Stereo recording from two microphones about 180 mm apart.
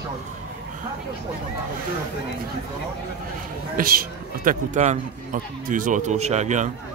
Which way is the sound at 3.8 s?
55° right (ahead or behind).